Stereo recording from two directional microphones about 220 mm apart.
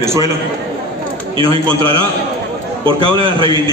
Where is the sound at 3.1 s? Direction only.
25° right (ahead or behind).